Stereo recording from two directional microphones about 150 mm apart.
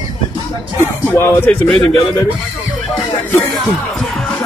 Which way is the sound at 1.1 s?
15° left (ahead or behind).